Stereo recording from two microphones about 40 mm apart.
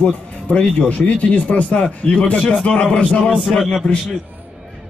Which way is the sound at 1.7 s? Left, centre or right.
Left.